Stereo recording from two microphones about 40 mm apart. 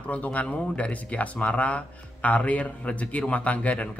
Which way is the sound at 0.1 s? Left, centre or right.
Left.